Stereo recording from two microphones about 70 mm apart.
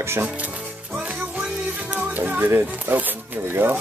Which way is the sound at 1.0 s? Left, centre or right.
Right.